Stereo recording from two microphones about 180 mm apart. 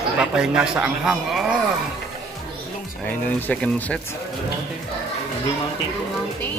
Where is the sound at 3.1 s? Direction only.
10° left (ahead or behind).